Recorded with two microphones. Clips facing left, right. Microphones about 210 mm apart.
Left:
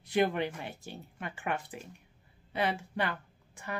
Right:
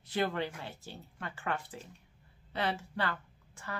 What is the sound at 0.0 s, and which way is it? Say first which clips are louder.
A woman's voice: left 4 dB; 15° left (ahead or behind).